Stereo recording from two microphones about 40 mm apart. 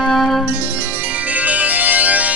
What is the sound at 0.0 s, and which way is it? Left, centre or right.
Music, centre.